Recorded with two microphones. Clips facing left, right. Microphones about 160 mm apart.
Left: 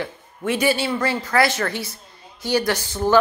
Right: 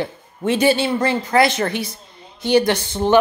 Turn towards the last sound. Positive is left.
turn(degrees=-25)  # may be behind; listen again after turning